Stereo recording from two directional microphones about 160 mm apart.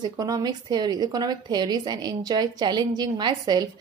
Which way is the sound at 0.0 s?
25° right (ahead or behind).